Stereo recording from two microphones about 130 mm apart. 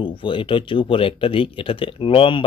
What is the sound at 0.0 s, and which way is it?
Speech, 40° left (ahead or behind).